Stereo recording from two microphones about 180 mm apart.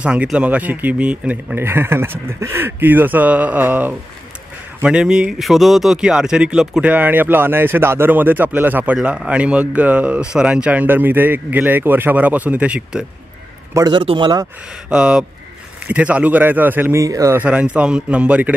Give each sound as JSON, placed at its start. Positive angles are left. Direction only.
{"t": 0.0, "sound": "speech", "side_deg": -5}
{"t": 13.7, "sound": "a man's voice", "side_deg": -25}
{"t": 14.9, "sound": "speech", "side_deg": -5}